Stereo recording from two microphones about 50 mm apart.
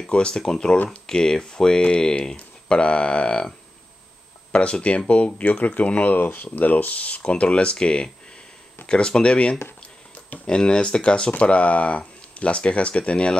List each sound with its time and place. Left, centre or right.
0.1 s speech: centre
4.5 s speech: centre